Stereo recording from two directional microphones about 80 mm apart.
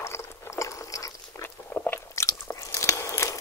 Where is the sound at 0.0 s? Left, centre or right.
Left.